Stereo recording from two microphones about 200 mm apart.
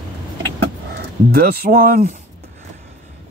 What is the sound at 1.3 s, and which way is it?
Speech, 45° right (ahead or behind).